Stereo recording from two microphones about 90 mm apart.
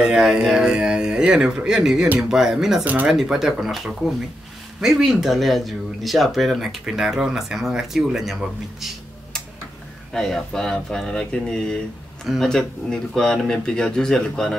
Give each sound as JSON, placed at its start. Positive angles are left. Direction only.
{"t": 0.0, "sound": "speech", "side_deg": -5}
{"t": 2.8, "sound": "speech", "side_deg": -20}
{"t": 3.1, "sound": "speech", "side_deg": -5}
{"t": 10.1, "sound": "speech", "side_deg": 5}